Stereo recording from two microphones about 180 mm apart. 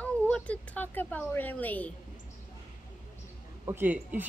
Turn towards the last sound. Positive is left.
turn(degrees=-10)  # may be behind; listen again after turning